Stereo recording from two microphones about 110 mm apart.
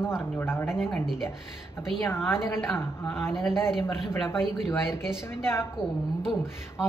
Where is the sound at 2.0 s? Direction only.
20° left (ahead or behind).